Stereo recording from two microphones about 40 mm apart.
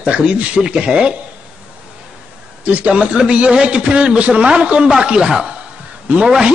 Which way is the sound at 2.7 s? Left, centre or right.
Right.